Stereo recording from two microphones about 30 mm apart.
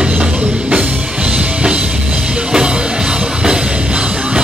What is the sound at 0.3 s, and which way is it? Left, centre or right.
Music, right.